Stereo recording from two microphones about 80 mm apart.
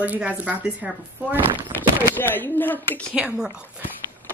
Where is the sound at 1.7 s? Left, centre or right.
Left.